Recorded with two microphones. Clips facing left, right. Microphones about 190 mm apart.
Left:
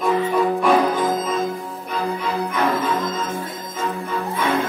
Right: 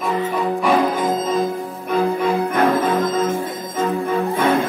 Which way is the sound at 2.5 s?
50° right (ahead or behind).